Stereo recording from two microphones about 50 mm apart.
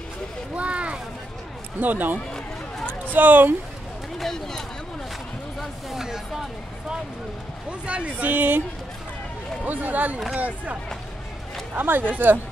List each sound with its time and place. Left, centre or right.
0.6 s a sound: right
1.8 s speech: right
4.2 s speech: centre
5.6 s a sound: centre
7.8 s speech: right
8.3 s speech: right
9.7 s speech: right
11.7 s speech: right